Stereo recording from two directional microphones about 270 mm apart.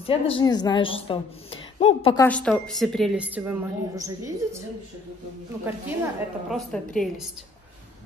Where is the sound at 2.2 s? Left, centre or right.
Centre.